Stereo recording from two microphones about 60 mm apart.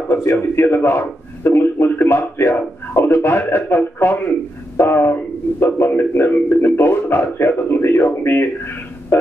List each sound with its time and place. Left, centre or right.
0.1 s a man's voice: left